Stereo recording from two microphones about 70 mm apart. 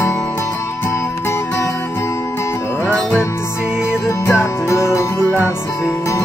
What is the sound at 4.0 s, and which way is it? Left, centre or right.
Music, left.